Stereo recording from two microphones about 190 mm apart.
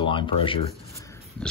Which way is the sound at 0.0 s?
25° left (ahead or behind).